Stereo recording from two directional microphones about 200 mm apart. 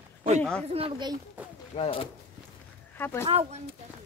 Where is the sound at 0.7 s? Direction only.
25° right (ahead or behind).